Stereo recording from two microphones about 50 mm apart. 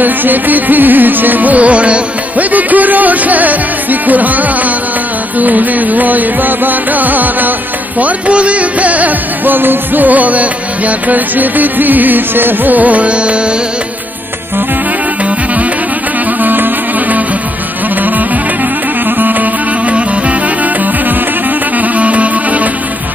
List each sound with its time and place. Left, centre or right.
0.0 s music: right
8.0 s music: right
21.9 s music: right